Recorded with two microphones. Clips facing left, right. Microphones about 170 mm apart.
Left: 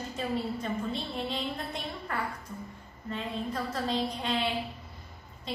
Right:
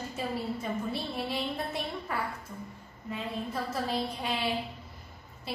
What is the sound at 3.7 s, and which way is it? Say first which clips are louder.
Speech: left 1 dB; 10° right (ahead or behind).